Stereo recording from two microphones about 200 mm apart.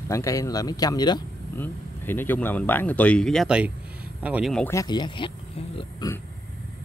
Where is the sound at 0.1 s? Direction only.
15° left (ahead or behind).